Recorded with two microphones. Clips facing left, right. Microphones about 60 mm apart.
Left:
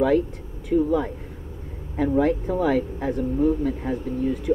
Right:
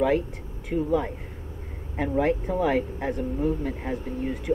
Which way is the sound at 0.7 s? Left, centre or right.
Centre.